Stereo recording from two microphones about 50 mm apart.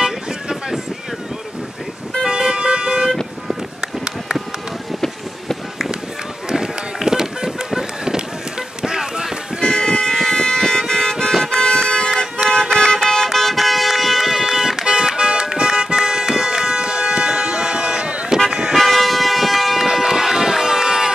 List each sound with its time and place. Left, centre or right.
0.0 s vehicle: centre
2.2 s vehicle: centre
6.5 s run: centre
9.6 s vehicle: centre
11.4 s toot: centre
12.4 s vehicle horn: centre
18.5 s car: centre
18.8 s toot: centre